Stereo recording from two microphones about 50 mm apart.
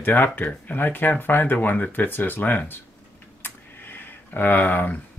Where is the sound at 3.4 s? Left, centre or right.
Left.